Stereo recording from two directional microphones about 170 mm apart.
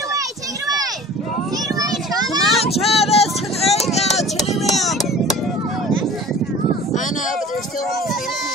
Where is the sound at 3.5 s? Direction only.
40° left (ahead or behind).